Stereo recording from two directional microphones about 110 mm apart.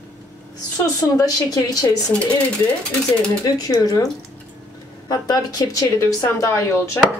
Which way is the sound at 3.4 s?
35° left (ahead or behind).